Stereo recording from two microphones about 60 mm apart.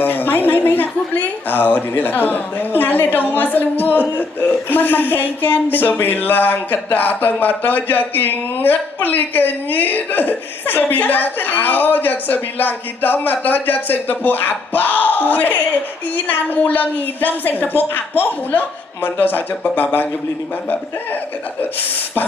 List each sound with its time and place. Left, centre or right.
0.0 s speech: left